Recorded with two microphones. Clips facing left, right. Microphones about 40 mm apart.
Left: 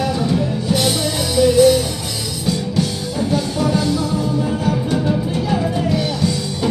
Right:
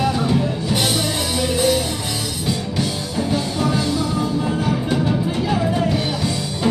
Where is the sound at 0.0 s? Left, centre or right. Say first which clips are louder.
Even; centre.